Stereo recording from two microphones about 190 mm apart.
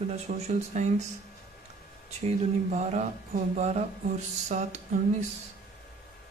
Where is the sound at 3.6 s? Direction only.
35° right (ahead or behind).